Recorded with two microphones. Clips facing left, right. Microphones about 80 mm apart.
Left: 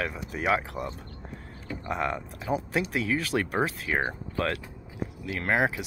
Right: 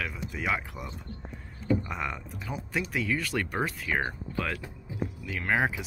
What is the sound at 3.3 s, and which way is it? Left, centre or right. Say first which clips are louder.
Speech: left 3 dB; centre.